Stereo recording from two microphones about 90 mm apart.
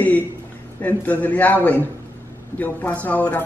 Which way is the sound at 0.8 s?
20° left (ahead or behind).